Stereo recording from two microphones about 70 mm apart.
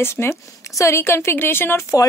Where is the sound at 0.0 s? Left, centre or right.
Left.